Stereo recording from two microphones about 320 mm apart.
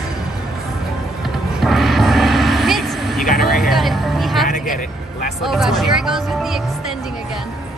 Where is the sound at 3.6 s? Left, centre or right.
Centre.